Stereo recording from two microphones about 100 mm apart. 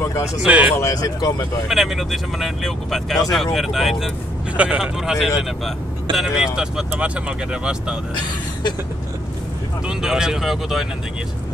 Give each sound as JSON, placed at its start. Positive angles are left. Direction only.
{"t": 0.5, "sound": "speech", "side_deg": -15}
{"t": 0.7, "sound": "speech", "side_deg": 30}
{"t": 1.7, "sound": "speech", "side_deg": -5}
{"t": 4.6, "sound": "speech", "side_deg": -10}
{"t": 9.8, "sound": "speech", "side_deg": -5}